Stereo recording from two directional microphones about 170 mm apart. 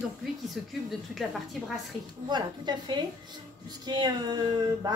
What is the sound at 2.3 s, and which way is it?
Speech, 25° right (ahead or behind).